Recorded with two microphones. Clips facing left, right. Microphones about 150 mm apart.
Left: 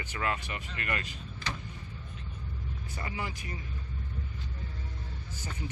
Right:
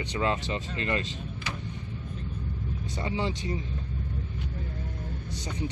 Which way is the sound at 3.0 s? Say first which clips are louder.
Right 8 dB; 25° right (ahead or behind).